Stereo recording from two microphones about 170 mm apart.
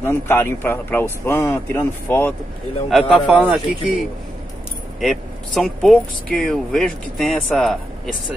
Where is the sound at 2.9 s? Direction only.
Centre (ahead or behind).